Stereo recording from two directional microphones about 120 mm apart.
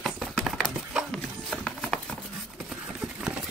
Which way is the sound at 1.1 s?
5° left (ahead or behind).